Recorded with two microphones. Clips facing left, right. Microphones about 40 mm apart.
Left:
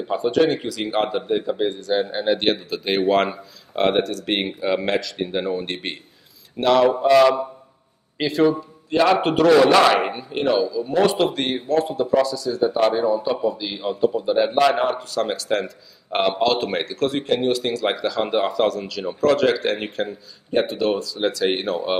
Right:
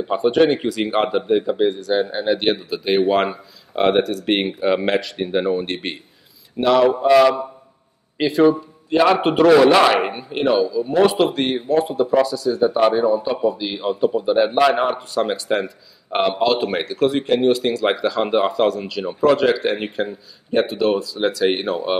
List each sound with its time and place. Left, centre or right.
0.1 s speech: right
0.6 s speech: right
1.2 s a man's voice: centre
4.9 s speech: right
5.3 s a man's voice: centre
15.6 s a man's voice: centre